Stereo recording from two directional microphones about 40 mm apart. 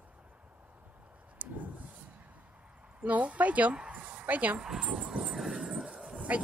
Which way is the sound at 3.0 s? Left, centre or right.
Right.